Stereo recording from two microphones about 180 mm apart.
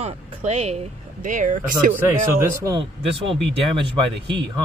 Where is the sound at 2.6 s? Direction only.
20° right (ahead or behind).